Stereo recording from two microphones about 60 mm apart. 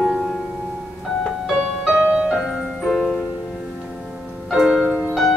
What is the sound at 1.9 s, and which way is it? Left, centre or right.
Music, right.